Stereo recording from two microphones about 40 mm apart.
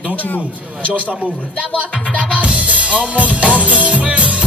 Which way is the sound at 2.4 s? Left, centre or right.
Right.